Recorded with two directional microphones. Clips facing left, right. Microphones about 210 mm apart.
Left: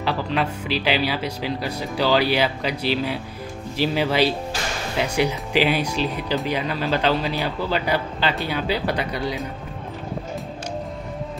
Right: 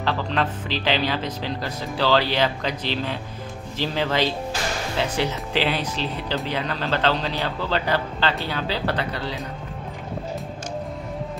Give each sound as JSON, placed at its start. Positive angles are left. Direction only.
{"t": 0.0, "sound": "speech", "side_deg": 10}